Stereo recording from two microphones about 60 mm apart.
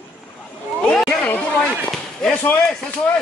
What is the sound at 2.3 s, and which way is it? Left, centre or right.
Speech, left.